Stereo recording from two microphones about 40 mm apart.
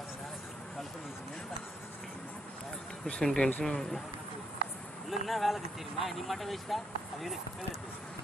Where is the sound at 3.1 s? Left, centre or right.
Left.